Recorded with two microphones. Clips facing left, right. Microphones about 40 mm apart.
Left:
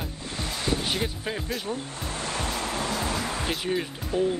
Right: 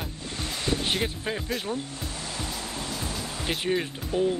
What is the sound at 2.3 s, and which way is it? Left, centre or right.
Music, left.